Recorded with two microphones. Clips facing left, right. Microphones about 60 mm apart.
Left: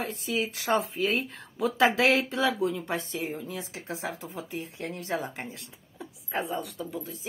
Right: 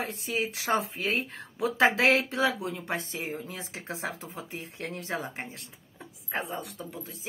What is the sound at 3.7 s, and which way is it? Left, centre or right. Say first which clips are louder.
Speech: even; right.